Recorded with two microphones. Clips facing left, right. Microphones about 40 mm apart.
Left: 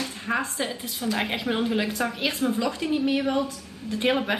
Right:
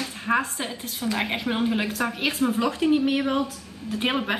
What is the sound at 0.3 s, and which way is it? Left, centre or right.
A woman's voice, centre.